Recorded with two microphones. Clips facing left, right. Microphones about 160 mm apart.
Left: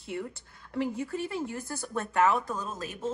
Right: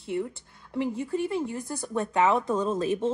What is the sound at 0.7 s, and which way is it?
Cutlery, 5° left (ahead or behind).